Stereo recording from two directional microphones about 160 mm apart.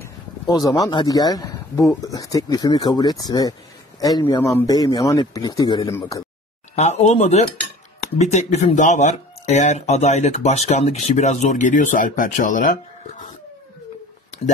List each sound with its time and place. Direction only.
0.0 s a sound: 25° left (ahead or behind)
0.8 s speech: 25° left (ahead or behind)
6.7 s speech: 45° left (ahead or behind)